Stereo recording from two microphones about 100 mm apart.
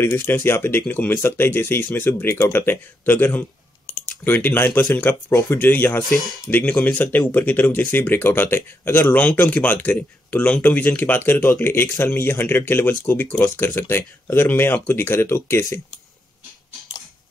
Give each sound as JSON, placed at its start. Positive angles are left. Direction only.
{"t": 0.0, "sound": "speech", "side_deg": 20}
{"t": 5.9, "sound": "speech", "side_deg": 0}
{"t": 6.5, "sound": "speech", "side_deg": 15}